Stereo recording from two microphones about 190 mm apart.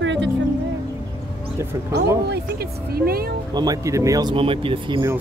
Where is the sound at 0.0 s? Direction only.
75° right (ahead or behind).